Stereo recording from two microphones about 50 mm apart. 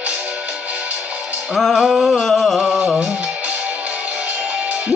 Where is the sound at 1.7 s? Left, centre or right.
Centre.